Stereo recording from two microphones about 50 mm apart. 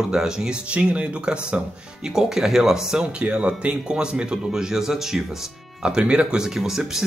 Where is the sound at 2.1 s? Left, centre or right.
Centre.